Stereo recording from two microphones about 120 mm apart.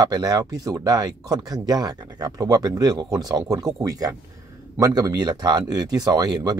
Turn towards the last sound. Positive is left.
turn(degrees=-35)  # may be behind; listen again after turning